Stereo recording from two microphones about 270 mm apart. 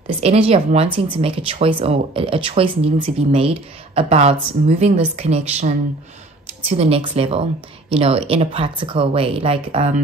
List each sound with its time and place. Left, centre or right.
0.2 s speech: right
6.8 s speech: right